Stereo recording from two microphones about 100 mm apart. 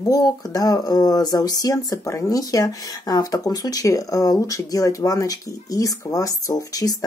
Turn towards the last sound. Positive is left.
turn(degrees=40)  # may be behind; listen again after turning